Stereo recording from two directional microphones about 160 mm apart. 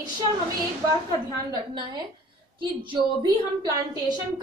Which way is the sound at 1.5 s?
25° right (ahead or behind).